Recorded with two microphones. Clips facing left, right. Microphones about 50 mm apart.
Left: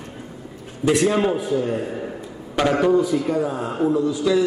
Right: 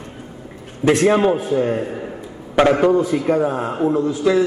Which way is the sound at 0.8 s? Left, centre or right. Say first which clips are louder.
Right 4 dB; right.